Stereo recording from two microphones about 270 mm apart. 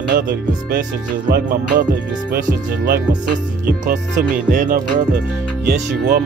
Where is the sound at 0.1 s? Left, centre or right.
Right.